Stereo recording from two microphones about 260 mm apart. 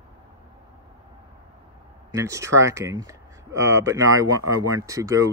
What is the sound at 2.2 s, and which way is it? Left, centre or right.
Speech, centre.